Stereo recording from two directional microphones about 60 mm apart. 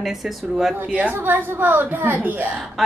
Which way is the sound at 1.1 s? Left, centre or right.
Right.